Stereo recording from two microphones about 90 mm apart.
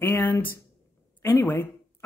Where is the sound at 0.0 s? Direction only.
25° left (ahead or behind).